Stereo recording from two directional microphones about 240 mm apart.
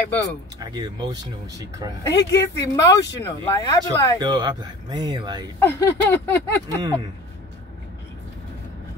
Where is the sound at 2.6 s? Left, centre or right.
Centre.